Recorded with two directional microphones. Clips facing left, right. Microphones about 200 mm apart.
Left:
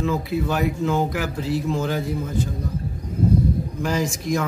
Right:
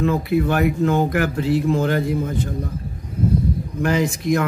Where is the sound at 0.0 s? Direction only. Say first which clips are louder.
Right 4 dB; 60° right (ahead or behind).